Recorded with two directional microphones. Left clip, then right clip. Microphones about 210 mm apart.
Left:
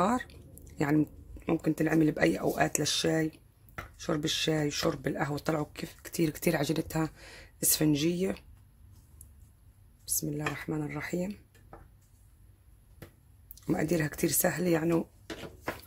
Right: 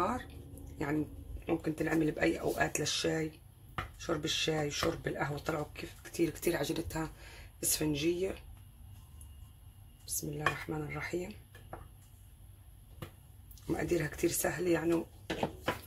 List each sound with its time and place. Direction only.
0.0 s a sound: 50° left (ahead or behind)
0.8 s speech: 50° left (ahead or behind)
10.1 s speech: 50° left (ahead or behind)
13.7 s speech: 50° left (ahead or behind)